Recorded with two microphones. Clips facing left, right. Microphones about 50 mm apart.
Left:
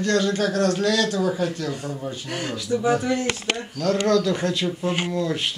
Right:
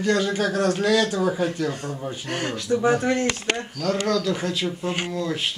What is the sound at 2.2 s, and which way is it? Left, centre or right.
Speech, right.